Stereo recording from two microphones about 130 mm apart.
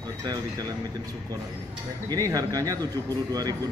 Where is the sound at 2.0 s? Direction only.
30° right (ahead or behind).